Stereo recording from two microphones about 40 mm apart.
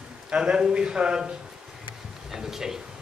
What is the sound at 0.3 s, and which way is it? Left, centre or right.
A man's voice, right.